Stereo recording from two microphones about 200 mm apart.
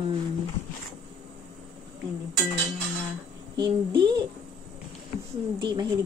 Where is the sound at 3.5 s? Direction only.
20° right (ahead or behind).